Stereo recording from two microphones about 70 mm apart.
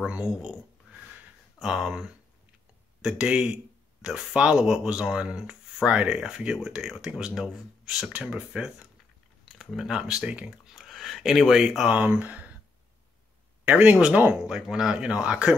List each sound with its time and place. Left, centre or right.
0.0 s speech: centre
1.6 s speech: centre
9.5 s speech: centre
10.7 s a sound: centre
12.0 s speech: right
13.7 s speech: centre
14.4 s speech: centre